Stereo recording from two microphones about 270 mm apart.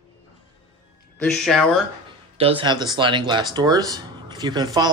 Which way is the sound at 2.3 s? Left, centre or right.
Right.